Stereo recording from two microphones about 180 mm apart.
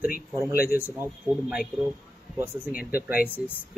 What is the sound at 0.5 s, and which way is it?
Speech, 55° left (ahead or behind).